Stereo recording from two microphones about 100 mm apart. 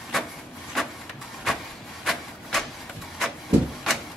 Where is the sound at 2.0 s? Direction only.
Centre (ahead or behind).